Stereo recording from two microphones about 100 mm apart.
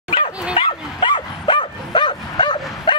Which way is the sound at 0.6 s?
55° left (ahead or behind).